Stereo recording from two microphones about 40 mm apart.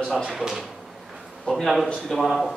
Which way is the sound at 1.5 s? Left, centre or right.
Left.